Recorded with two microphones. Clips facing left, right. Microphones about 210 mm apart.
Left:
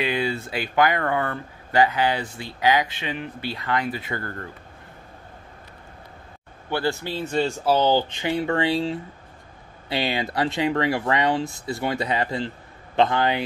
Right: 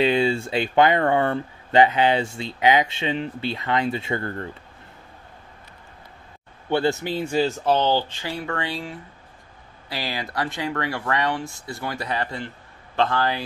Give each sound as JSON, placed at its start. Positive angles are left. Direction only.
{"t": 0.0, "sound": "speech", "side_deg": -25}
{"t": 6.7, "sound": "speech", "side_deg": -20}
{"t": 7.7, "sound": "speech", "side_deg": 10}